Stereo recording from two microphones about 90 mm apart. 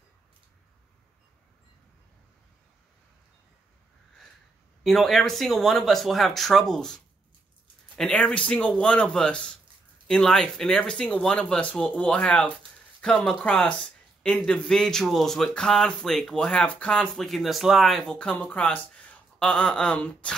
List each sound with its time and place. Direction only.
4.8 s speech: centre (ahead or behind)
8.0 s speech: 10° left (ahead or behind)
18.1 s speech: 15° left (ahead or behind)